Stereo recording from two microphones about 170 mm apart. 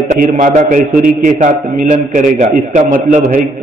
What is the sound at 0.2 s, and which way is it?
A man's voice, 50° right (ahead or behind).